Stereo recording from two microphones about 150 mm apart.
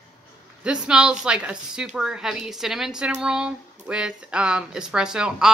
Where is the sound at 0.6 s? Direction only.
5° right (ahead or behind).